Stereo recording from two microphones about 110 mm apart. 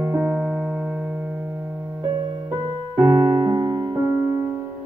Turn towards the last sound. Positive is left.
turn(degrees=-40)  # may be behind; listen again after turning